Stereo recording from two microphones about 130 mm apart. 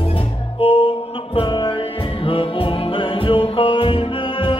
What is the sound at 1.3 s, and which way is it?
Music, 35° left (ahead or behind).